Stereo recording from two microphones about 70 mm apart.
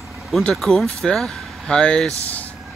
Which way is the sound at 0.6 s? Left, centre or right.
Centre.